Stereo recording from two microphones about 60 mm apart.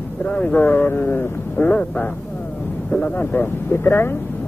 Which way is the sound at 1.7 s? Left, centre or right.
Left.